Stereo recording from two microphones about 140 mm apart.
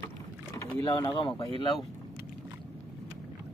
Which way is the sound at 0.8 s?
35° left (ahead or behind).